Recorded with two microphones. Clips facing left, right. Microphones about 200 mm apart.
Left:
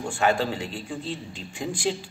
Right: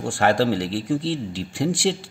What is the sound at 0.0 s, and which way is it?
A man's voice, 80° right.